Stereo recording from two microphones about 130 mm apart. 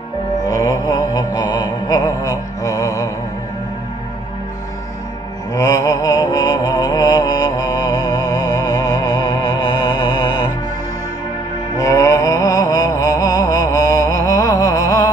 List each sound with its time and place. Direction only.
0.5 s mantra: 30° left (ahead or behind)
5.5 s mantra: 25° left (ahead or behind)
11.8 s mantra: 25° left (ahead or behind)
14.6 s a sound: 25° left (ahead or behind)